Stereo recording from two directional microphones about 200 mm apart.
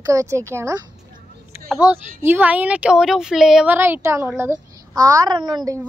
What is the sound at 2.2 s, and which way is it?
Speech, 10° right (ahead or behind).